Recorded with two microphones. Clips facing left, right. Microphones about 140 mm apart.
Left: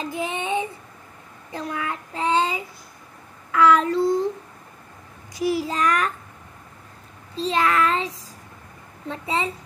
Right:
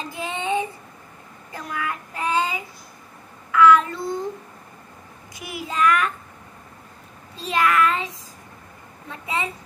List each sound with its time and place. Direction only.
0.0 s child singing: 20° left (ahead or behind); by 4.2 s 35° left (ahead or behind)
5.3 s child singing: 35° left (ahead or behind)
7.3 s child singing: 30° left (ahead or behind)
9.1 s a sound: 30° left (ahead or behind)